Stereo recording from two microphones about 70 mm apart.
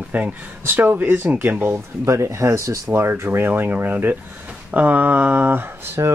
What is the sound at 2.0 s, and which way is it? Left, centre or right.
Speech, right.